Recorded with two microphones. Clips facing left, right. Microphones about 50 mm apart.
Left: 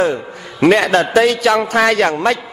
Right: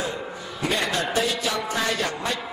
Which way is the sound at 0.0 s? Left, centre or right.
Left.